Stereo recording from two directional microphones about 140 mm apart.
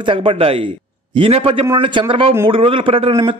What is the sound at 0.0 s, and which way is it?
A man's voice, 40° right (ahead or behind).